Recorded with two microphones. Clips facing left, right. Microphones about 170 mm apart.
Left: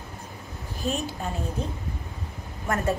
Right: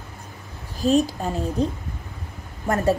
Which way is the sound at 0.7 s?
35° right (ahead or behind).